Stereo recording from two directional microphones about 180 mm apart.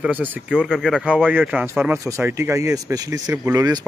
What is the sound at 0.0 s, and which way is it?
Speech, 10° right (ahead or behind).